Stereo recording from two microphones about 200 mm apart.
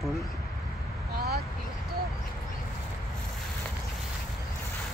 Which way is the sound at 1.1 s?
50° right (ahead or behind).